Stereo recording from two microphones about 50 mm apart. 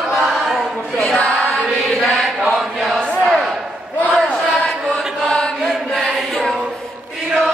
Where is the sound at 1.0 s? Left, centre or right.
Centre.